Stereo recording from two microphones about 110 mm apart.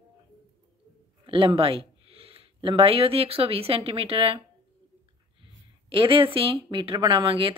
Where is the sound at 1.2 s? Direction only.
55° right (ahead or behind).